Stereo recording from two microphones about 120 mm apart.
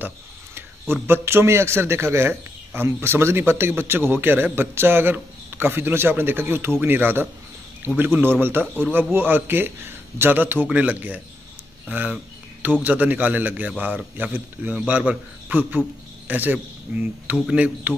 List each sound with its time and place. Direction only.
1.0 s a man's voice: 20° right (ahead or behind)